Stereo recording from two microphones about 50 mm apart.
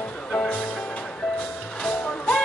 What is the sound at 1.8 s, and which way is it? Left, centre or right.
Music, centre.